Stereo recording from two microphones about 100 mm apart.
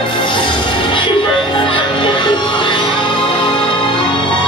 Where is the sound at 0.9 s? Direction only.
55° left (ahead or behind).